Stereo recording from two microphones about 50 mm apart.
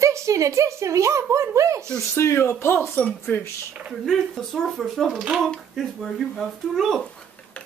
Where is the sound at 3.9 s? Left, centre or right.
Centre.